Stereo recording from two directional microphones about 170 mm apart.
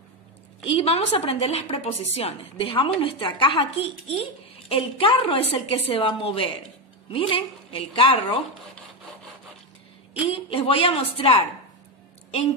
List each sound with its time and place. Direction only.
0.7 s a woman's voice: 35° left (ahead or behind)
10.2 s a woman's voice: 35° left (ahead or behind)